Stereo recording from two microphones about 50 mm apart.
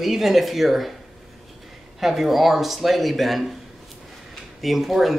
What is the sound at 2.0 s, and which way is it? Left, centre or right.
Speech, centre.